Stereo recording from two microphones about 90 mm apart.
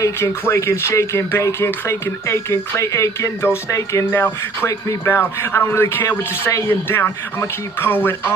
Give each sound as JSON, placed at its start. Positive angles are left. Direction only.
{"t": 0.0, "sound": "speech", "side_deg": 30}